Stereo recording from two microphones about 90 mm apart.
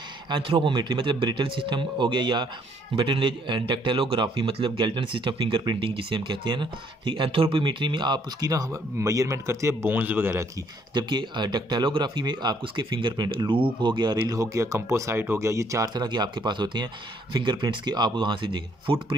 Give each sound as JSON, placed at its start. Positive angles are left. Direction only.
{"t": 0.3, "sound": "speech", "side_deg": -70}
{"t": 10.9, "sound": "speech", "side_deg": -55}
{"t": 15.9, "sound": "speech", "side_deg": -50}